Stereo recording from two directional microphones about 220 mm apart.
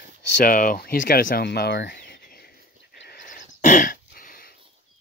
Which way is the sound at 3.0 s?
40° left (ahead or behind).